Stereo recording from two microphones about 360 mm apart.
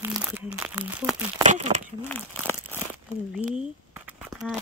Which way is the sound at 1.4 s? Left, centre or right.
Centre.